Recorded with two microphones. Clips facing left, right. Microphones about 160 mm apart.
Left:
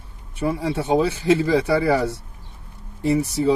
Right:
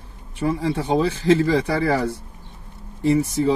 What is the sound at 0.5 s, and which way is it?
Speech, 15° left (ahead or behind).